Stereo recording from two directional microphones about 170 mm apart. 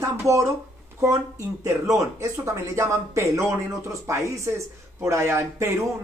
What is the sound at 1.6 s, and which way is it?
A woman's voice, 20° right (ahead or behind).